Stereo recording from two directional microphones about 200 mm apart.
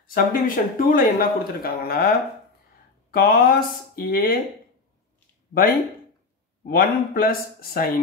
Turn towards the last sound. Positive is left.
turn(degrees=50)  # may be behind; listen again after turning